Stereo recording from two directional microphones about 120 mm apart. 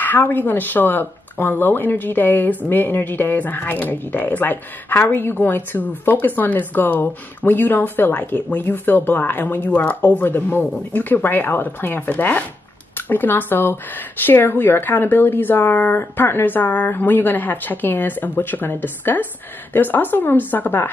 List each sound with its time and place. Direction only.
0.0 s speech: 15° left (ahead or behind)